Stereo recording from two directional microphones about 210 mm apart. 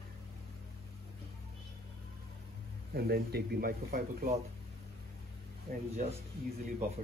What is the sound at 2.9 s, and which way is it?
Speech, 50° right (ahead or behind).